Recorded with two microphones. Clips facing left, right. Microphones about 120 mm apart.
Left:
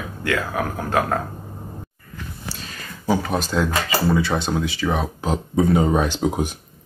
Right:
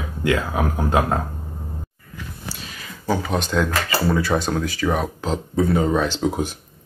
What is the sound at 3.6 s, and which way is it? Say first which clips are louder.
Speech: left 1 dB; 20° left (ahead or behind).